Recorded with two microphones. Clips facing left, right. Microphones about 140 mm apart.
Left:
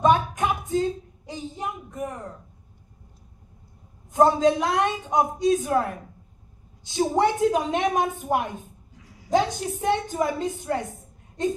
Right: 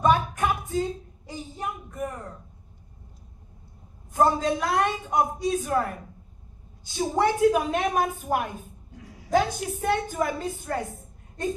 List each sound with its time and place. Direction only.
0.0 s a sound: 20° left (ahead or behind)
4.1 s a woman's voice: 20° left (ahead or behind)
7.2 s a woman's voice: 20° left (ahead or behind)